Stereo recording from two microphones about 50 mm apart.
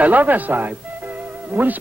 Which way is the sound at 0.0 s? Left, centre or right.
Right.